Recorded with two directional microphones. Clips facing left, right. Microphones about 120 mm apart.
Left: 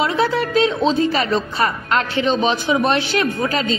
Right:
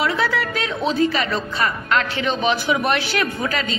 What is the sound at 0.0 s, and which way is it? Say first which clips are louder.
A woman's voice: left 3 dB; 30° left (ahead or behind).